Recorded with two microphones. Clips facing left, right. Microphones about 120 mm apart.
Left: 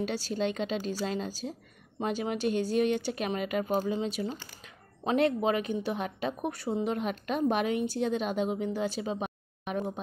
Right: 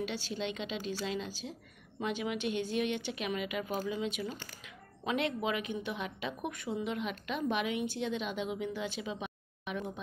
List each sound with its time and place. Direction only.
0.0 s a woman's voice: 40° left (ahead or behind)